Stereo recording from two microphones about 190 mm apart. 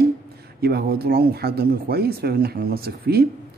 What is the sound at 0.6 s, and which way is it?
A man's voice, 55° right (ahead or behind).